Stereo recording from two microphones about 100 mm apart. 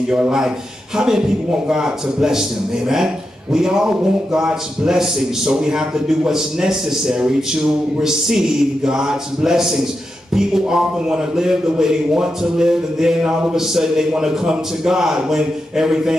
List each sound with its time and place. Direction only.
0.1 s a man's voice: 5° right (ahead or behind)
3.5 s a man's voice: 5° right (ahead or behind)